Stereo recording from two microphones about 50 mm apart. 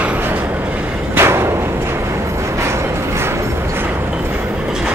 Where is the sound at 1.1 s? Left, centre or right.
Right.